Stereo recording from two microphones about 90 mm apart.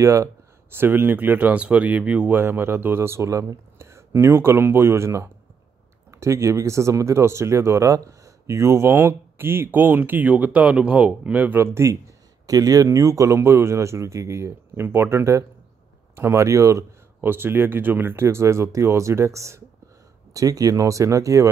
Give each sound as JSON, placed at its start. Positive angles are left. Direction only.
{"t": 0.0, "sound": "speech", "side_deg": -35}
{"t": 12.4, "sound": "speech", "side_deg": -40}
{"t": 17.3, "sound": "speech", "side_deg": -25}